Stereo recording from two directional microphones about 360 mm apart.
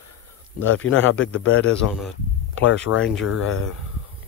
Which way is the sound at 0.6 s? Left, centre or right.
Left.